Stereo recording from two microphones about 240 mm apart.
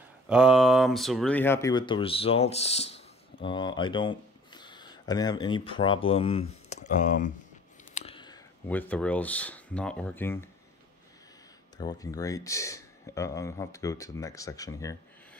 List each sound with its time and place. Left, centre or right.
0.3 s speech: centre; by 7.3 s left
7.9 s a sound: left
8.6 s speech: centre
11.8 s speech: centre